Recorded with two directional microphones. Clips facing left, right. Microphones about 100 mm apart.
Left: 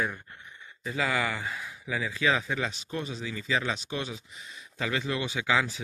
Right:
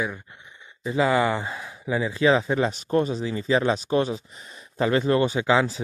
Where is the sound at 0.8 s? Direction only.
30° right (ahead or behind).